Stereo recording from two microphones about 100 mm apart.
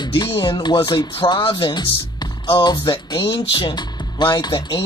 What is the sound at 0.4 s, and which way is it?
Speech, 50° left (ahead or behind).